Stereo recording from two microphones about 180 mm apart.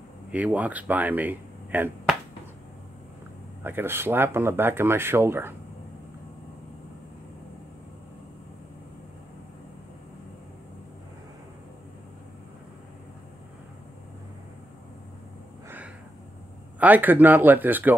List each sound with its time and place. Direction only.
0.3 s speech: 5° right (ahead or behind)
3.6 s speech: 10° right (ahead or behind)
16.8 s speech: 10° right (ahead or behind)